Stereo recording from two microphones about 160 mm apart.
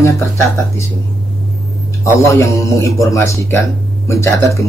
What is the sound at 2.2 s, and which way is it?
A man's voice, 20° left (ahead or behind).